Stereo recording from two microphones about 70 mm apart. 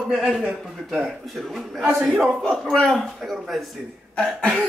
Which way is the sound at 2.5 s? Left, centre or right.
Centre.